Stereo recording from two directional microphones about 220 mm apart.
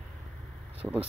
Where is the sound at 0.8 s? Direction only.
5° right (ahead or behind).